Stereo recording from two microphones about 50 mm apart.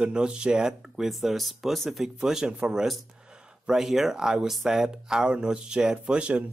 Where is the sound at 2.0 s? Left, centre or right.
Centre.